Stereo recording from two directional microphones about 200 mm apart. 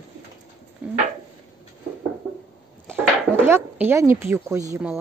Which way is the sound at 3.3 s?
10° right (ahead or behind).